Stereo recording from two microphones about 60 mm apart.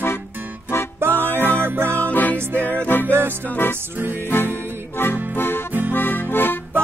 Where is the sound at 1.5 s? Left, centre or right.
Right.